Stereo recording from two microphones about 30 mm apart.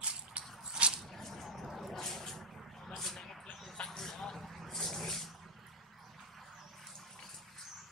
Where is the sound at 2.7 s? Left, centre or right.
Centre.